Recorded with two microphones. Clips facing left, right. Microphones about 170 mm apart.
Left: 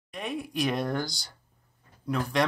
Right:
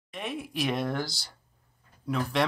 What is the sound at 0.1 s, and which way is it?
Speech, centre (ahead or behind).